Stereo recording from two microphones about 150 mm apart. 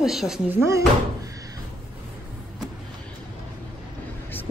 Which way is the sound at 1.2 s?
25° right (ahead or behind).